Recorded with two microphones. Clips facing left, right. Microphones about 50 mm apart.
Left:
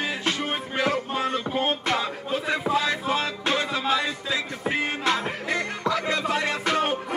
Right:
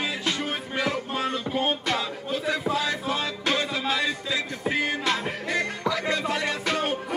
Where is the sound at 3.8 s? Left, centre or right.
Left.